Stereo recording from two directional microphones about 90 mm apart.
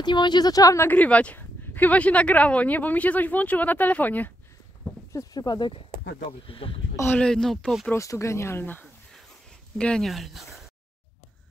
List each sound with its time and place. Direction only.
0.0 s speech: 55° left (ahead or behind); by 0.8 s 40° left (ahead or behind)
0.8 s speech: 15° left (ahead or behind)
5.1 s speech: 45° left (ahead or behind)
5.6 s speech: 75° left (ahead or behind)
7.2 s speech: 5° left (ahead or behind)
7.9 s speech: 35° left (ahead or behind)
9.8 s speech: 10° left (ahead or behind)